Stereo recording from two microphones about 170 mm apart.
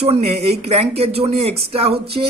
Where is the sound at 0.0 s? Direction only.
35° right (ahead or behind).